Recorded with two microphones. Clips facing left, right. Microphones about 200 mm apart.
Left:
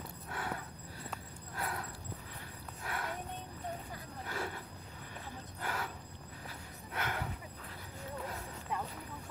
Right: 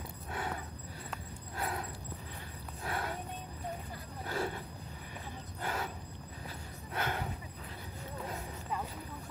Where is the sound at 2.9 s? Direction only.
30° right (ahead or behind).